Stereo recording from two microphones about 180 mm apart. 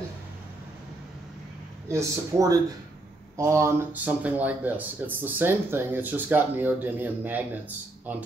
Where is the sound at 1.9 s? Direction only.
15° right (ahead or behind).